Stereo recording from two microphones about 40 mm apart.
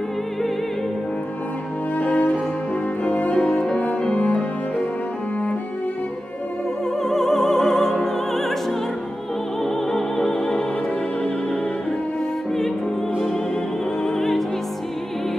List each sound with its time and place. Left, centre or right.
2.0 s cello: left
3.1 s music: left
7.0 s opera: centre
9.6 s music: centre
14.0 s music: centre